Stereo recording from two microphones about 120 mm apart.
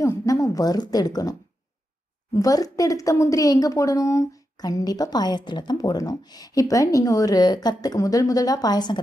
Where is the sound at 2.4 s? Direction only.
30° left (ahead or behind).